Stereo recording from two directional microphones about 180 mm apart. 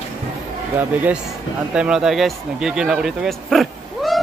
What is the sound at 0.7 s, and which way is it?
Speech, 10° right (ahead or behind).